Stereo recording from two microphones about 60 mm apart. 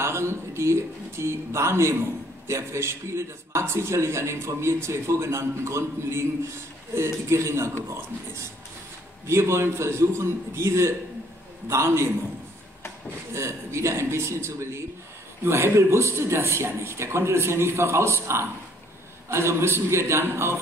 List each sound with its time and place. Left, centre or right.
0.0 s speech: right
13.3 s speech: right